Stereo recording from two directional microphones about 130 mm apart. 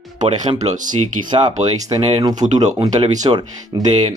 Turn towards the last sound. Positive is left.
turn(degrees=-35)  # may be behind; listen again after turning